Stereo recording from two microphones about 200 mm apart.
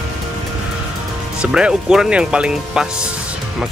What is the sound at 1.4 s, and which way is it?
Speech, 5° right (ahead or behind).